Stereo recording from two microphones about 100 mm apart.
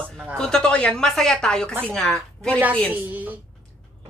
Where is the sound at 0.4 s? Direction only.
5° left (ahead or behind).